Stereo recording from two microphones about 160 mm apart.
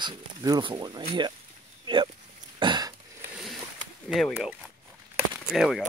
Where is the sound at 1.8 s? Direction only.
30° right (ahead or behind).